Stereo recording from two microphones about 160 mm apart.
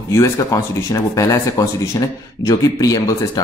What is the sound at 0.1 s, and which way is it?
Speech, 15° left (ahead or behind).